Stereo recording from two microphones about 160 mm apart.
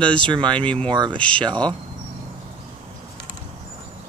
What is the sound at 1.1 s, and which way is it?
Speech, 5° left (ahead or behind).